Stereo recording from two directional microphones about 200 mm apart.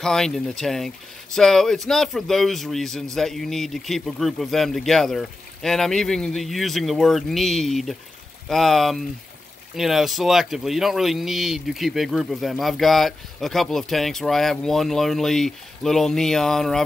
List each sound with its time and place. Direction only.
0.0 s speech: 5° left (ahead or behind)